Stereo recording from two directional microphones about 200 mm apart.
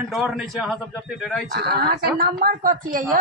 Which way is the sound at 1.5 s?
50° right (ahead or behind).